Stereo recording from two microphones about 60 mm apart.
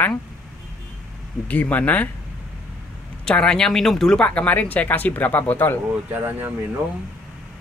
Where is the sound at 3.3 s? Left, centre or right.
Centre.